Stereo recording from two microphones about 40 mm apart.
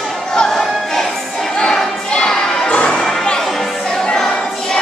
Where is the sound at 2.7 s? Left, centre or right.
Left.